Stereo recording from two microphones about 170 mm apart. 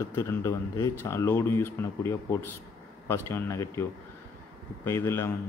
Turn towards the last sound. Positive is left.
turn(degrees=15)  # may be behind; listen again after turning